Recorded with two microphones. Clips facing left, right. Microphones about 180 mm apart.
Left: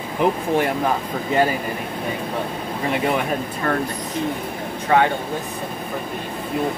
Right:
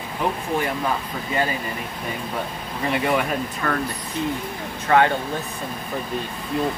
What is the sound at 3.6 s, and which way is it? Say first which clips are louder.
Speech: left 3 dB; 25° left (ahead or behind).